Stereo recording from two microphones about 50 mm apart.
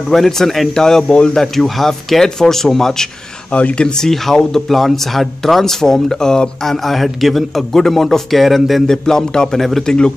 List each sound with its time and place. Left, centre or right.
0.1 s speech: centre
1.0 s speech: left
1.3 s speech: centre
3.5 s speech: left
3.8 s speech: centre
8.8 s speech: centre